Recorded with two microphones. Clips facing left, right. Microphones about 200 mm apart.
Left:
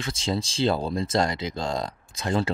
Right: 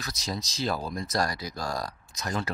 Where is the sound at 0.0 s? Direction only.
25° left (ahead or behind).